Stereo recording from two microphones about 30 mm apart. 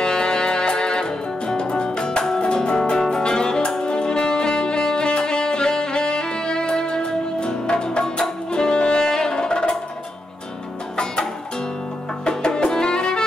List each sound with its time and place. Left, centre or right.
0.0 s music: left
9.1 s music: left
12.3 s music: left